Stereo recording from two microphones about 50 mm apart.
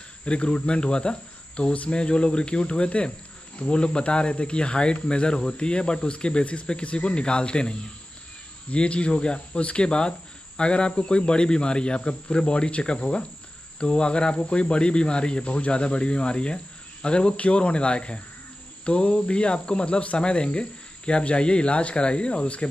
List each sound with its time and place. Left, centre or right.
0.2 s speech: left